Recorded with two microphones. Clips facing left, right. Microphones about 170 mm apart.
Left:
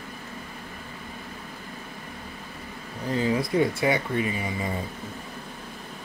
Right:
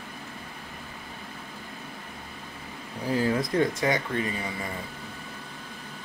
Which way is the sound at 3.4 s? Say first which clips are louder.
Left 1 dB; centre (ahead or behind).